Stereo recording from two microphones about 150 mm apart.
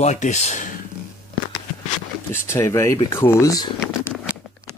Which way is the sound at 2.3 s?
15° left (ahead or behind).